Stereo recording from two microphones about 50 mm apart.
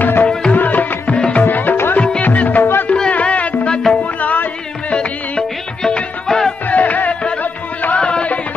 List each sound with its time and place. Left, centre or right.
0.0 s music: left
1.0 s music: left
1.4 s music: left
2.0 s music: left
2.2 s music: left
3.6 s music: centre
4.0 s music: left
4.9 s music: centre
6.7 s music: left